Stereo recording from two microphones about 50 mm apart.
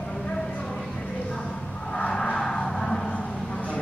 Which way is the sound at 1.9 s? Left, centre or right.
Centre.